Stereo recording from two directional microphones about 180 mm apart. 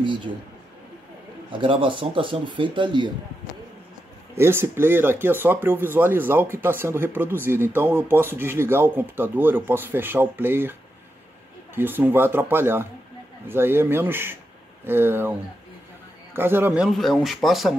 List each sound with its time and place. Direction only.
0.0 s speech: 25° right (ahead or behind)
1.5 s speech: 30° right (ahead or behind)
4.4 s speech: 15° right (ahead or behind)
16.3 s speech: 10° right (ahead or behind)